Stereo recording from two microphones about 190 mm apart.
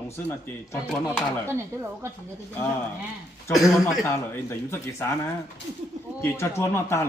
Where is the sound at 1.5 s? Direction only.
15° right (ahead or behind).